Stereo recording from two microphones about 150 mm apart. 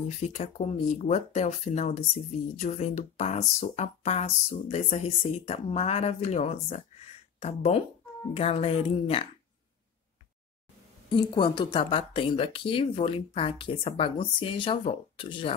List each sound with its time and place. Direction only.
0.2 s speech: 50° left (ahead or behind)
11.1 s speech: 30° left (ahead or behind)